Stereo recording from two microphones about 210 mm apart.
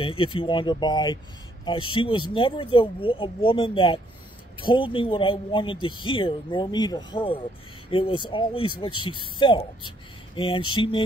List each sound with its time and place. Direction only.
0.0 s speech: 25° left (ahead or behind)